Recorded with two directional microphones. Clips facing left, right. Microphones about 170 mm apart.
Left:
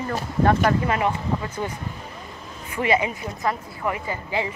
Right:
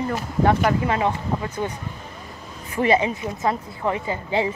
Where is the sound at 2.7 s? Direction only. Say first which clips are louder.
Right 3 dB; 30° right (ahead or behind).